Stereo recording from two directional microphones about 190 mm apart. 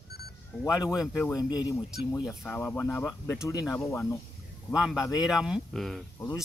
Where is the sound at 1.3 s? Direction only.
20° left (ahead or behind).